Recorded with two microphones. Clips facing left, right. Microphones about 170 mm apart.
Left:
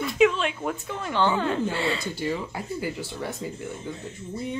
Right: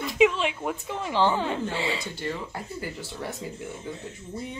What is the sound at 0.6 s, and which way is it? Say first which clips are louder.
Speech: even; 10° right (ahead or behind).